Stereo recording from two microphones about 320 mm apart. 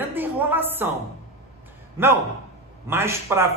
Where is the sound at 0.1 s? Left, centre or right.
Centre.